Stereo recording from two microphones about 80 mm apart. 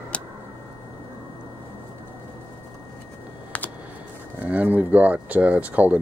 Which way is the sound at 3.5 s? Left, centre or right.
Centre.